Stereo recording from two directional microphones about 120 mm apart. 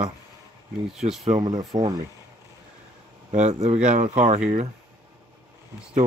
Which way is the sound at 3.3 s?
75° right (ahead or behind).